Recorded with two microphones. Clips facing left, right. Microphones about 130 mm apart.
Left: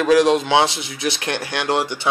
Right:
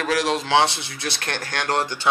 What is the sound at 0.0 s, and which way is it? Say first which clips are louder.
A man's voice: left 8 dB; 20° left (ahead or behind).